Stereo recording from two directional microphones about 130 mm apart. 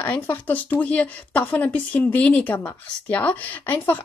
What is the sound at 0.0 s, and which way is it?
A woman's voice, 15° left (ahead or behind).